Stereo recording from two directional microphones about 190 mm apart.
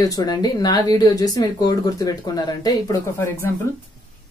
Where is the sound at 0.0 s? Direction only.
20° left (ahead or behind).